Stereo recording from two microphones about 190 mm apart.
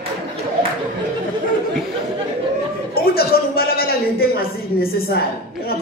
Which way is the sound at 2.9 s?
55° left (ahead or behind).